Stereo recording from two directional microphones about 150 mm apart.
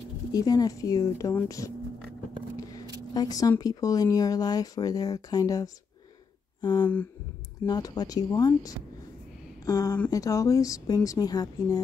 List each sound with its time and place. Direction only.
0.3 s speech: 25° left (ahead or behind)
3.2 s speech: 25° left (ahead or behind)